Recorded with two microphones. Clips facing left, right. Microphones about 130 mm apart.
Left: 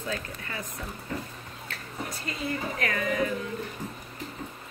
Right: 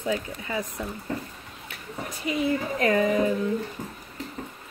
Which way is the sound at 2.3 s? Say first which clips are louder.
Right 8 dB; 20° right (ahead or behind).